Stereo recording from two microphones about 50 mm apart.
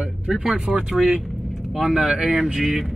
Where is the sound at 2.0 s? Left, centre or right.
Centre.